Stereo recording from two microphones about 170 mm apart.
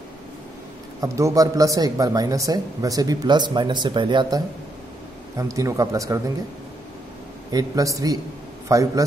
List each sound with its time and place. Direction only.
1.0 s speech: 15° right (ahead or behind)
5.4 s speech: 20° right (ahead or behind)
7.5 s a man's voice: 20° right (ahead or behind)